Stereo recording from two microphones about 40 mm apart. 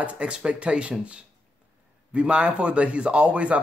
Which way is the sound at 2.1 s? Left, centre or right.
Right.